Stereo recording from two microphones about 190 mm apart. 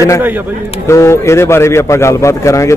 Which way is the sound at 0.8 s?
15° left (ahead or behind).